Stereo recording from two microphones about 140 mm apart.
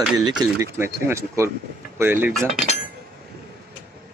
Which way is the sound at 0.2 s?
25° right (ahead or behind).